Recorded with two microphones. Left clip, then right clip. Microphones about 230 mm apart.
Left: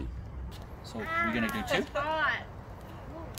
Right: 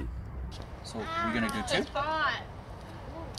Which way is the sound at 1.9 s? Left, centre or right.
Left.